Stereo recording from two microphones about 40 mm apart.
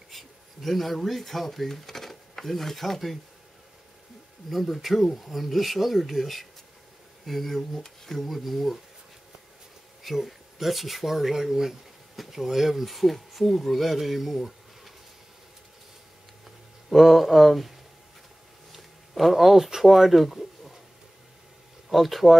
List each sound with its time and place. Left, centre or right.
0.1 s speech: centre
4.5 s speech: centre
10.0 s speech: centre
16.9 s speech: centre
21.8 s speech: centre